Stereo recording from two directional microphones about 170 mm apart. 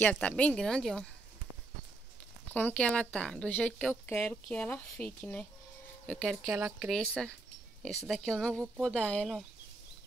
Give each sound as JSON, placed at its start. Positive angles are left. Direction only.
{"t": 0.0, "sound": "speech", "side_deg": 10}
{"t": 2.5, "sound": "speech", "side_deg": 10}
{"t": 6.5, "sound": "speech", "side_deg": -15}
{"t": 6.9, "sound": "speech", "side_deg": 5}